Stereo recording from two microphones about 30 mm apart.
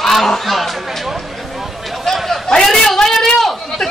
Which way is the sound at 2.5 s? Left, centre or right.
Centre.